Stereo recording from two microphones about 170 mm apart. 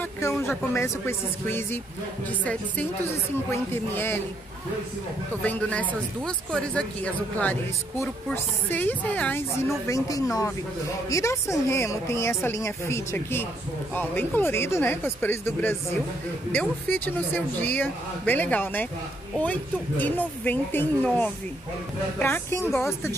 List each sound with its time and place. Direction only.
0.0 s speech: 15° left (ahead or behind)
3.7 s speech: 15° left (ahead or behind)
5.3 s speech: 10° left (ahead or behind)
9.8 s speech: 20° left (ahead or behind)
22.7 s speech: centre (ahead or behind)